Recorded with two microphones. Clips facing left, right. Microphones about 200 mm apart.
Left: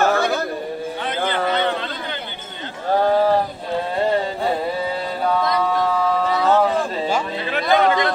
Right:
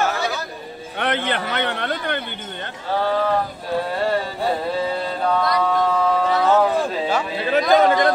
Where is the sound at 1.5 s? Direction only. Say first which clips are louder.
Left 2 dB; 65° right (ahead or behind).